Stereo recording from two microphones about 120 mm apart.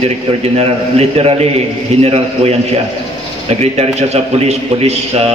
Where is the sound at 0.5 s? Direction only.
60° right (ahead or behind).